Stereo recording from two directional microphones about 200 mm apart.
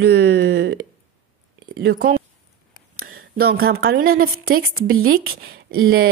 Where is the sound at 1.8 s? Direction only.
50° right (ahead or behind).